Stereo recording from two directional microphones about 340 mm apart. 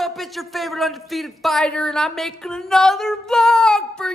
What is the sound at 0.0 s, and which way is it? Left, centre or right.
Speech, centre.